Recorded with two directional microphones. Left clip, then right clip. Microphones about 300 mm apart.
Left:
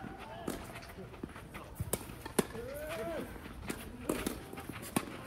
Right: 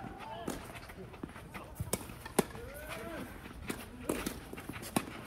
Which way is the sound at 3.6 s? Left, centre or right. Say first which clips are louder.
Even; centre.